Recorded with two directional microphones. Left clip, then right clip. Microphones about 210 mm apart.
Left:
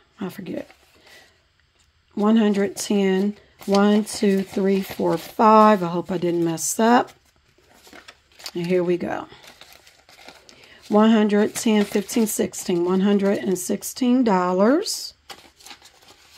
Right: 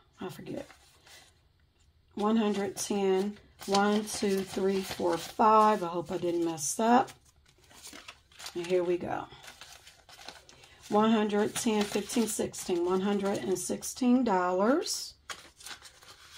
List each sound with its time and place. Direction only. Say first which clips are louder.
0.2 s speech: left 8 dB; 45° left (ahead or behind)
2.2 s speech: left 9 dB; 45° left (ahead or behind)
3.5 s shuffling cards: left 7 dB; 30° left (ahead or behind)
3.8 s speech: left 9 dB; 45° left (ahead or behind)
8.5 s speech: left 7 dB; 45° left (ahead or behind)
10.4 s a sound: left 7 dB; 45° left (ahead or behind)
11.8 s speech: left 8 dB; 30° left (ahead or behind)
12.4 s speech: left 8 dB; 45° left (ahead or behind)